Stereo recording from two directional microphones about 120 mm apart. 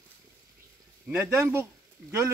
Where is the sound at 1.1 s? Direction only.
20° right (ahead or behind).